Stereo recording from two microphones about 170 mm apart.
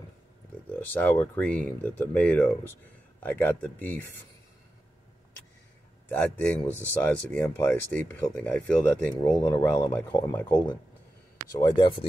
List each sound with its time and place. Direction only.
0.7 s speech: 10° left (ahead or behind)
6.0 s speech: 10° left (ahead or behind)
11.6 s speech: 25° left (ahead or behind)